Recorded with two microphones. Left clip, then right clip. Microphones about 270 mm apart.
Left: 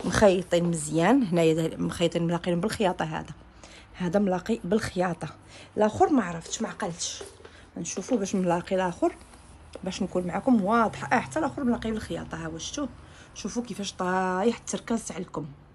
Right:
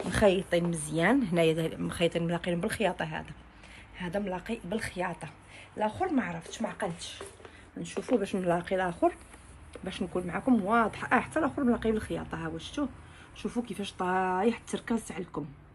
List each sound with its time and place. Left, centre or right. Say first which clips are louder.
0.1 s speech: left 4 dB; centre
6.2 s speech: left 3 dB; centre